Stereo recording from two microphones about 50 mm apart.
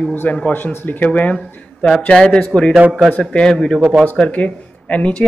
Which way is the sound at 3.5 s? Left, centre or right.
Centre.